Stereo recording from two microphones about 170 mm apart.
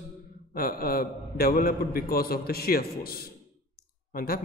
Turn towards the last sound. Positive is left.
turn(degrees=55)  # may be behind; listen again after turning